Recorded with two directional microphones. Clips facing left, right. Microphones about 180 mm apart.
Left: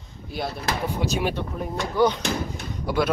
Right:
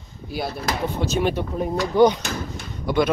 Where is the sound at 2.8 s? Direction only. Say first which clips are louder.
Right 3 dB; 5° left (ahead or behind).